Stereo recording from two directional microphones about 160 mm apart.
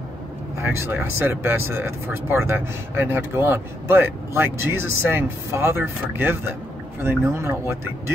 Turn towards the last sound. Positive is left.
turn(degrees=-15)  # may be behind; listen again after turning